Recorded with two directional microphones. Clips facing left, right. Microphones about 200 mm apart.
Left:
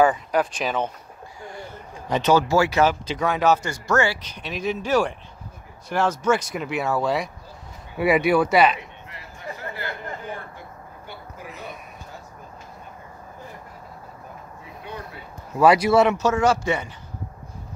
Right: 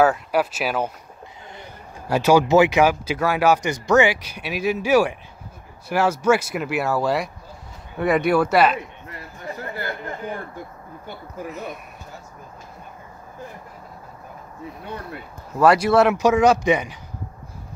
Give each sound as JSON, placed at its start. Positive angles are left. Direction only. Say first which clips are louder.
{"t": 0.0, "sound": "speech", "louder": "right 1 dB", "side_deg": -5}
{"t": 1.4, "sound": "vehicle", "louder": "left 6 dB", "side_deg": -20}
{"t": 2.0, "sound": "speech", "louder": "right 3 dB", "side_deg": -10}
{"t": 11.1, "sound": "speech", "louder": "right 7 dB", "side_deg": -45}
{"t": 15.5, "sound": "speech", "louder": "even", "side_deg": 0}
{"t": 16.2, "sound": "speech", "louder": "right 4 dB", "side_deg": -15}